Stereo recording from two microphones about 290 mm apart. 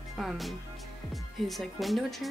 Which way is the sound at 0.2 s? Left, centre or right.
Centre.